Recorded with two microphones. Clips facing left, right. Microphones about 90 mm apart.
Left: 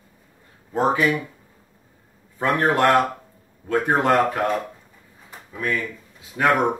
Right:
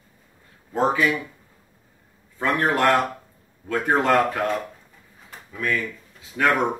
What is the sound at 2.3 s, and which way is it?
Speech, 20° left (ahead or behind).